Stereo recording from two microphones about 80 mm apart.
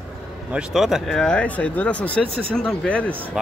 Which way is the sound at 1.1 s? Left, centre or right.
Centre.